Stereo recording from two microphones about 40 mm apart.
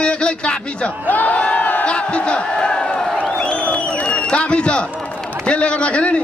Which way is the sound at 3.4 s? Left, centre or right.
Left.